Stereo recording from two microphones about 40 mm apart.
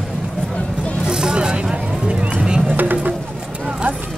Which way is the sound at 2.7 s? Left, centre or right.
Right.